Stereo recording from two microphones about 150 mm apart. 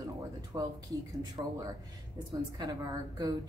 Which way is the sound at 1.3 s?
25° right (ahead or behind).